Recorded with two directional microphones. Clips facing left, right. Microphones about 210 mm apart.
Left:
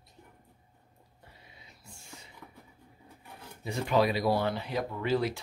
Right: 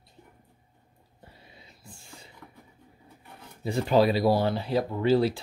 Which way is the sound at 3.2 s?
Centre (ahead or behind).